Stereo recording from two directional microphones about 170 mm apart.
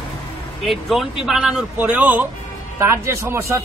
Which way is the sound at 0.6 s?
Centre (ahead or behind).